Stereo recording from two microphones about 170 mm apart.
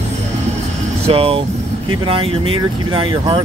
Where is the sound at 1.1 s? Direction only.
35° right (ahead or behind).